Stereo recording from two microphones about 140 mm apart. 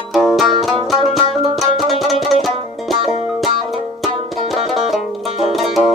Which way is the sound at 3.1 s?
50° left (ahead or behind).